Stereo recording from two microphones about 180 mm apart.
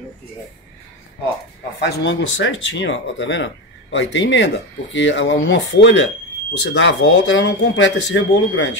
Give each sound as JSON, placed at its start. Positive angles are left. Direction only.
{"t": 1.8, "sound": "speech", "side_deg": 75}